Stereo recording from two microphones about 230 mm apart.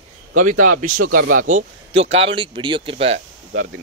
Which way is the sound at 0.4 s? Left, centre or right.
Right.